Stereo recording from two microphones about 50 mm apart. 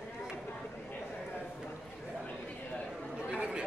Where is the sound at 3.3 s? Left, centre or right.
Right.